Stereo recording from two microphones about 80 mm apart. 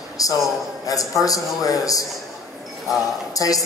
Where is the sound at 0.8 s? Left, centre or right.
Left.